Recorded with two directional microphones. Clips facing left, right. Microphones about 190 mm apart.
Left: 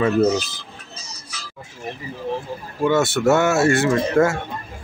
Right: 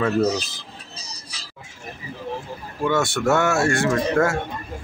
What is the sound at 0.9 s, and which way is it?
Music, 35° right (ahead or behind).